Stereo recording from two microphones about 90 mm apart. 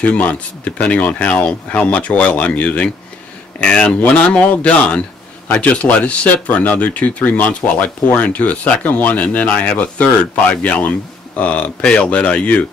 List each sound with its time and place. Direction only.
0.0 s speech: 15° left (ahead or behind)